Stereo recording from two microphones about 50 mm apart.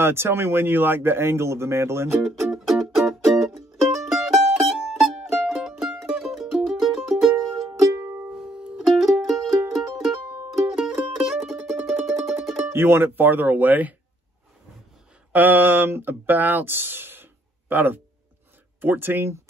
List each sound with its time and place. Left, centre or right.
0.0 s a man's voice: right
2.5 s music: centre
12.7 s speech: right
15.3 s speech: right